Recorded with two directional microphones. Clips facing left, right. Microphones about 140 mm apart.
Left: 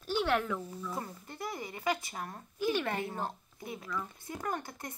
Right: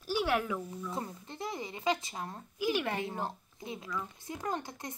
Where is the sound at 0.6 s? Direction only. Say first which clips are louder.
Right 1 dB; 25° right (ahead or behind).